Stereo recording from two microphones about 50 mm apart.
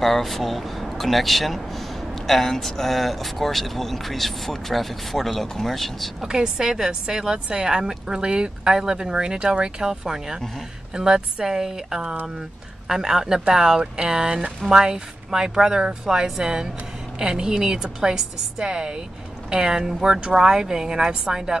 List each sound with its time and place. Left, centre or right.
0.0 s speech: centre
6.2 s a woman's voice: centre